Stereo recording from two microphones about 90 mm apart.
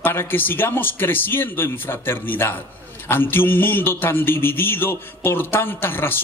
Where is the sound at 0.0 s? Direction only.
25° left (ahead or behind).